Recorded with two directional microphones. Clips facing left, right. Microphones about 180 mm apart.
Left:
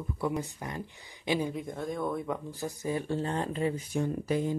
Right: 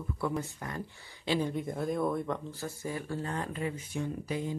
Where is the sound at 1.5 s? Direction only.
Centre (ahead or behind).